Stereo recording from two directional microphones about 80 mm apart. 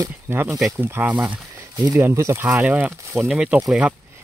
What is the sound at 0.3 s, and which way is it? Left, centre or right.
Speech, right.